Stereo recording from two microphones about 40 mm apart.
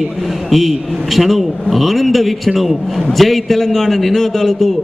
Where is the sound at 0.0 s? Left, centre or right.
Centre.